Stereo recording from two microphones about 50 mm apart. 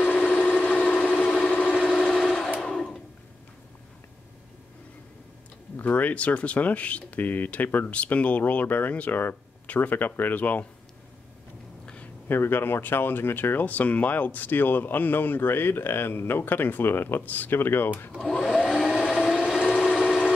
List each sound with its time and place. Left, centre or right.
0.3 s vehicle: left
1.9 s vehicle: centre
2.6 s a sound: centre
5.8 s speech: left
11.8 s a sound: left
12.3 s speech: left
13.7 s speech: left
18.3 s vacuum cleaner: centre
18.7 s vehicle: centre
19.9 s a sound: centre